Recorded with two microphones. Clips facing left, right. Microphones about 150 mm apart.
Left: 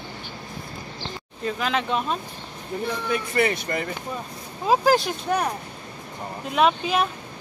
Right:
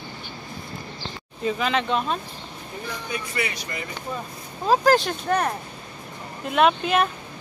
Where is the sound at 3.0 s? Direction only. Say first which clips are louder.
Left 7 dB; 50° left (ahead or behind).